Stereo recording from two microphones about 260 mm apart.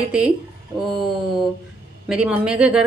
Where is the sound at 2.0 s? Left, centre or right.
Centre.